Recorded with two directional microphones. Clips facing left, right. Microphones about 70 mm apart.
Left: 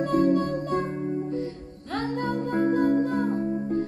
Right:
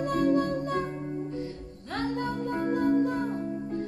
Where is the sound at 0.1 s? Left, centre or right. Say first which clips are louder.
Left 3 dB; left.